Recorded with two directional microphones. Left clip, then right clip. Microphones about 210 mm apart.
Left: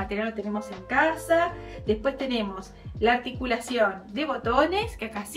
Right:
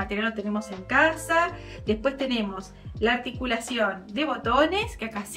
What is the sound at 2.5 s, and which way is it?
A woman's voice, 5° right (ahead or behind).